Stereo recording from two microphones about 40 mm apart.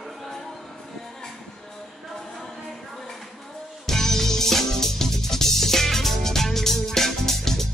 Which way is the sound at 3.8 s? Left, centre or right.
Centre.